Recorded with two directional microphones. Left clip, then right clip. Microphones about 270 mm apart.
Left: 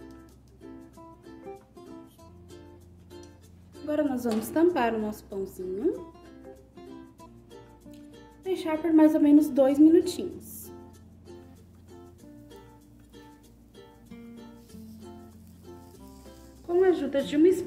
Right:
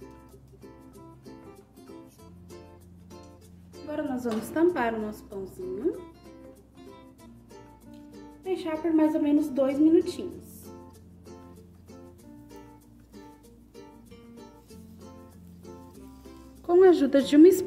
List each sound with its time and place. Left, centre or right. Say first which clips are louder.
3.8 s a woman's voice: left 4 dB; left
8.5 s a woman's voice: left 1 dB; left
16.6 s a sound: right 5 dB; right